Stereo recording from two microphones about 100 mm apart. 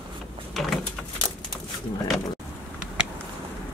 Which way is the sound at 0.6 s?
Centre (ahead or behind).